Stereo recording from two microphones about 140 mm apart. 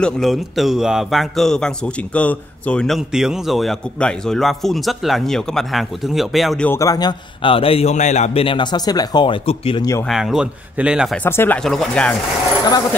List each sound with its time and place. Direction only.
0.0 s a man's voice: centre (ahead or behind)
6.7 s a man's voice: 25° left (ahead or behind); by 8.5 s 55° left (ahead or behind)
8.5 s a man's voice: 30° left (ahead or behind)
10.0 s a man's voice: centre (ahead or behind)
11.2 s speech: 15° left (ahead or behind)
11.6 s a man's voice: centre (ahead or behind)